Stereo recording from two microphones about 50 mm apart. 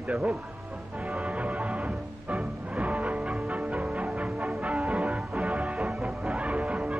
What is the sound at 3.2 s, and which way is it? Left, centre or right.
Music, centre.